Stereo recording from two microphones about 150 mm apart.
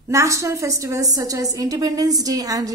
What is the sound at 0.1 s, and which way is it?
A woman's voice, 20° right (ahead or behind).